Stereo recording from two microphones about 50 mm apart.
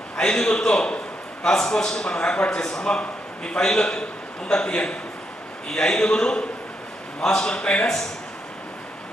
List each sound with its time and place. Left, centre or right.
0.1 s a man's voice: centre